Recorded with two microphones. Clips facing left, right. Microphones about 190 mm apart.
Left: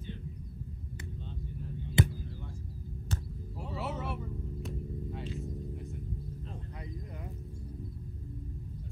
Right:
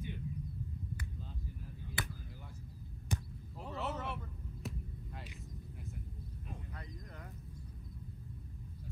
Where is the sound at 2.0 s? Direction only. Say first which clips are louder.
Left 15 dB; 25° left (ahead or behind).